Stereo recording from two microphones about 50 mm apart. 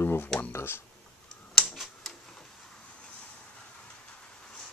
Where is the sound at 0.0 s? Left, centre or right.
Left.